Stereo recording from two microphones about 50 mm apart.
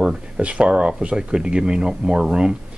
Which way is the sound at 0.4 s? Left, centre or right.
Right.